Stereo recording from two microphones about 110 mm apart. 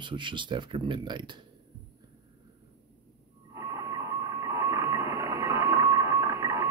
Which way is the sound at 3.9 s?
30° right (ahead or behind).